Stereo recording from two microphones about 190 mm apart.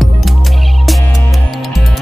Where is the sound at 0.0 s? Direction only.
Centre (ahead or behind).